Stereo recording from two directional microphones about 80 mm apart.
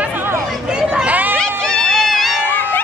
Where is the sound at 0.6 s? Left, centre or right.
Centre.